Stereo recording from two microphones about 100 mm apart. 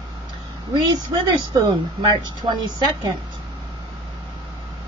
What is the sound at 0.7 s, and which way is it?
A woman's voice, 45° right (ahead or behind).